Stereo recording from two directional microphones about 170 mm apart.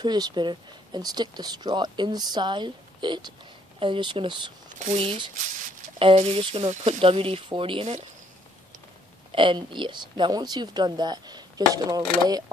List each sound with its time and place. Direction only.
0.0 s speech: 25° right (ahead or behind)
9.3 s speech: 30° right (ahead or behind)